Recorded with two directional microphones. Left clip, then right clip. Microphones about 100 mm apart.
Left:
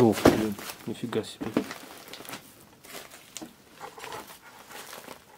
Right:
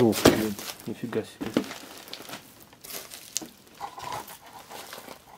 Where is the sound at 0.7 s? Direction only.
20° left (ahead or behind).